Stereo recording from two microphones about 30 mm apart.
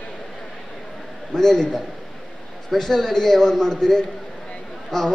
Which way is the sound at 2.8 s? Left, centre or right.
Centre.